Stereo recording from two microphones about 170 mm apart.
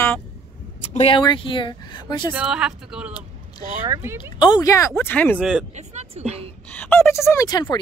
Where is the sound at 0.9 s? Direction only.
30° left (ahead or behind).